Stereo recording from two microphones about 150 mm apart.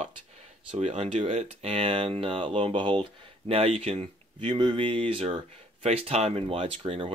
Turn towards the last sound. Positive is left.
turn(degrees=-35)  # may be behind; listen again after turning